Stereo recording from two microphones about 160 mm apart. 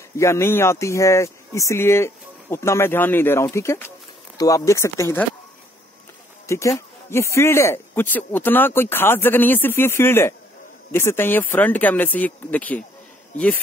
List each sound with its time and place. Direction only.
0.2 s speech: 15° left (ahead or behind)
6.4 s speech: 20° left (ahead or behind)